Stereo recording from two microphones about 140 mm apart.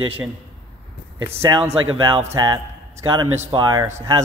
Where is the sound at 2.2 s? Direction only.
25° right (ahead or behind).